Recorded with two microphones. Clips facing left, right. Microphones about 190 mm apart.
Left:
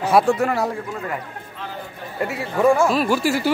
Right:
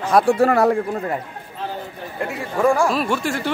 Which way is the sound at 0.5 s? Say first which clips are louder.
Right 6 dB; 55° right (ahead or behind).